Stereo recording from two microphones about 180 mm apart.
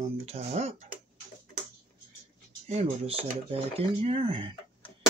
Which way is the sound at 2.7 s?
35° right (ahead or behind).